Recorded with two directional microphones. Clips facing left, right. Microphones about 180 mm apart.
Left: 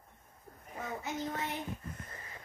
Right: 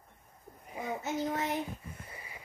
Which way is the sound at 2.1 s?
10° right (ahead or behind).